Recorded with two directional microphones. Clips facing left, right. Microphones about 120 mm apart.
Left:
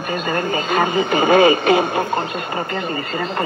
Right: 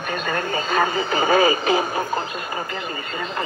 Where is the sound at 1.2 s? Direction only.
25° left (ahead or behind).